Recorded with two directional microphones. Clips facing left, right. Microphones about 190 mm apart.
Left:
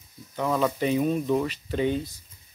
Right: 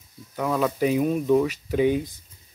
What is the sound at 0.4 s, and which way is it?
Speech, 5° right (ahead or behind).